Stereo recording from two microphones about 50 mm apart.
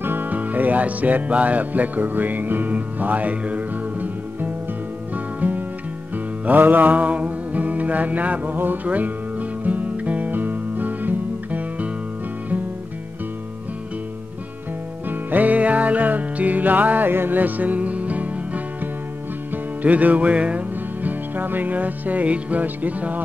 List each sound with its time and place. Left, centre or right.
0.0 s music: right
15.0 s music: right